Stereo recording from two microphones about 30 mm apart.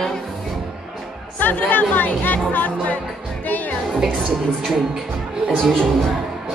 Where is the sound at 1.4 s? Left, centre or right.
Left.